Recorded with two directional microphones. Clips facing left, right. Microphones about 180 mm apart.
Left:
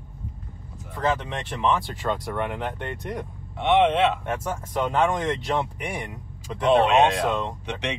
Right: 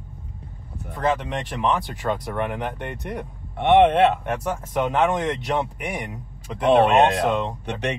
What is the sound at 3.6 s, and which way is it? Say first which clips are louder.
Speech: right 4 dB; 55° right (ahead or behind).